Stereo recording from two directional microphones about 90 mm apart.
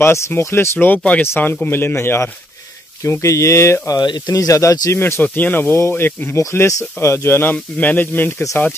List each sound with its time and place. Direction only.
0.0 s speech: 30° left (ahead or behind)
4.9 s speech: 25° left (ahead or behind)
7.5 s speech: 15° left (ahead or behind)